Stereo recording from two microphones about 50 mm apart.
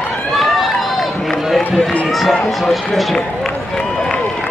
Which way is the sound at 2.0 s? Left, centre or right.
Centre.